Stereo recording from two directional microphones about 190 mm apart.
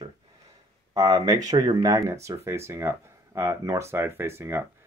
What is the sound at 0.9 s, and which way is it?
Speech, 15° right (ahead or behind).